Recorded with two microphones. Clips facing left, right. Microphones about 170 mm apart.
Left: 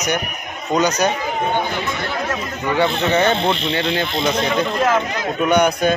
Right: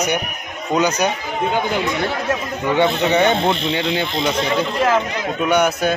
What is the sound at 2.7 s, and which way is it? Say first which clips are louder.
Speech: right 1 dB; 20° right (ahead or behind).